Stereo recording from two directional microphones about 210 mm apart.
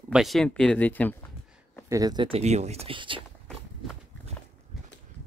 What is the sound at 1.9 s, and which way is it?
Speech, 15° right (ahead or behind).